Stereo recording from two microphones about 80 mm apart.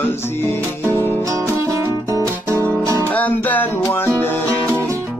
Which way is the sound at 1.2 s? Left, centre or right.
Right.